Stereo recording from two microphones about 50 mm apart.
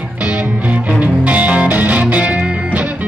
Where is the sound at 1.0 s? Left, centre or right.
Right.